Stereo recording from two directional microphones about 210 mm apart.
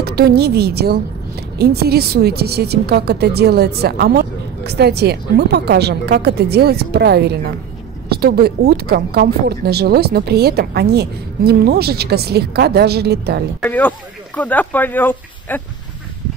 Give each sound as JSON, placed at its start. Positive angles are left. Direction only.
{"t": 0.0, "sound": "a woman's voice", "side_deg": -50}
{"t": 13.6, "sound": "speech", "side_deg": 10}